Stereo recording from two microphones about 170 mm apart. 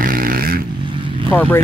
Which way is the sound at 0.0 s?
55° right (ahead or behind).